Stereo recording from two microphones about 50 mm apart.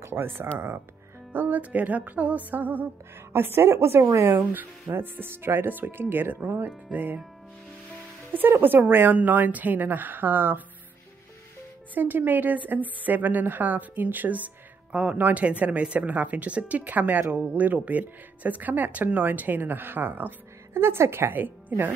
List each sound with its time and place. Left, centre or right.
0.0 s speech: right
1.3 s speech: right
3.3 s speech: right
3.7 s speech: right
5.0 s speech: right
8.3 s speech: right
11.9 s speech: right
14.9 s speech: right
15.1 s speech: right
20.7 s speech: right
21.4 s speech: right